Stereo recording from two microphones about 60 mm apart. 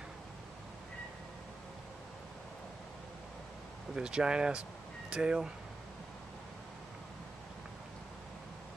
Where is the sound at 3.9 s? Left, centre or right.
Centre.